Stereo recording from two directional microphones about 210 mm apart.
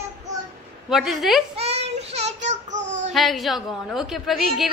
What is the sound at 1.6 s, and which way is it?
Child singing, 30° right (ahead or behind).